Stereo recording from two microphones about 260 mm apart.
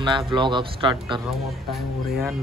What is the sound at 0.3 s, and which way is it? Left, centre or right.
Speech, centre.